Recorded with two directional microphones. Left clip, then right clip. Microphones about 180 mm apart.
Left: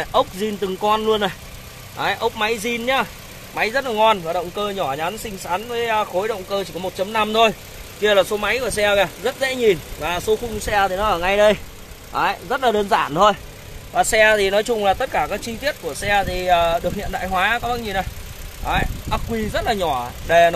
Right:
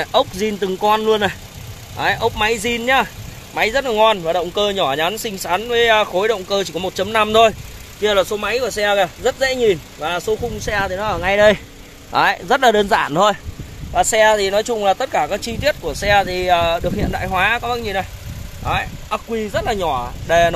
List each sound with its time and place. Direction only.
0.0 s speech: 25° right (ahead or behind)
8.0 s speech: 10° right (ahead or behind)
11.2 s speech: 20° right (ahead or behind)
12.1 s speech: 45° right (ahead or behind)
12.7 s speech: 20° right (ahead or behind)
13.9 s speech: centre (ahead or behind)